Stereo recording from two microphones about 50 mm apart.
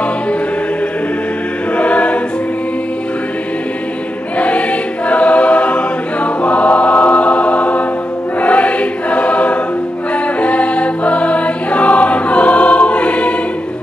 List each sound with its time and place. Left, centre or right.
1.8 s choir: left
4.4 s choir: left
10.4 s music: left